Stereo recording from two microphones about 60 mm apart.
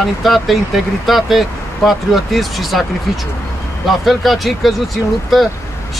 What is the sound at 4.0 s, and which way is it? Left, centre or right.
Speech, centre.